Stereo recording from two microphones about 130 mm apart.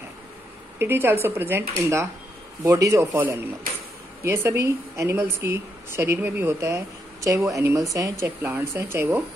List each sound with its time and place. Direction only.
0.7 s a woman's voice: 20° right (ahead or behind)